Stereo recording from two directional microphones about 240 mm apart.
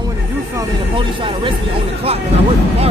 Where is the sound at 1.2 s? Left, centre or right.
Right.